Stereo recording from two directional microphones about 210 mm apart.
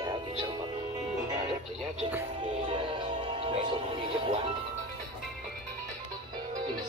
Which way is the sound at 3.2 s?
25° right (ahead or behind).